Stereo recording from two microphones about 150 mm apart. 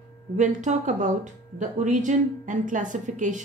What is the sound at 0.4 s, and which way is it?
Speech, 55° right (ahead or behind).